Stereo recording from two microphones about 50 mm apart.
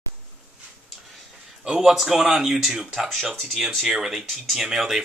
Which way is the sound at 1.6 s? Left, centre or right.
Centre.